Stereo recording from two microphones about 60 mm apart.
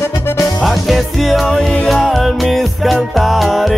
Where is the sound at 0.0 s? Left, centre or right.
Left.